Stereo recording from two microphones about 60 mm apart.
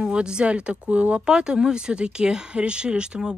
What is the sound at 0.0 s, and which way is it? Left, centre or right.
Speech, centre.